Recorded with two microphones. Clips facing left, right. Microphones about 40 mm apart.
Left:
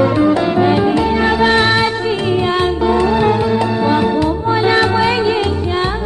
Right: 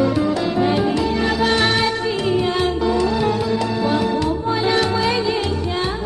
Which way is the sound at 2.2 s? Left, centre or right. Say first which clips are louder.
Left 3 dB; left.